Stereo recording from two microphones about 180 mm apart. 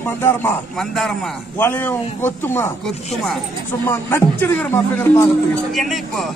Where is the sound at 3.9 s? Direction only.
10° left (ahead or behind).